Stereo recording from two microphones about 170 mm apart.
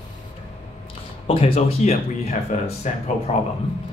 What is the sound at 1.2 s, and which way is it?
Speech, 35° left (ahead or behind).